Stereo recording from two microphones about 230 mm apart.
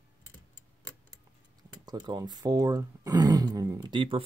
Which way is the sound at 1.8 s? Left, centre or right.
Centre.